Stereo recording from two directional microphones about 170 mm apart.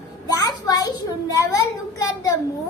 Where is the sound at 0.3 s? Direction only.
20° left (ahead or behind).